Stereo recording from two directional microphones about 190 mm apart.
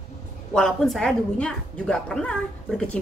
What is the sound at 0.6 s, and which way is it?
A woman's voice, centre (ahead or behind).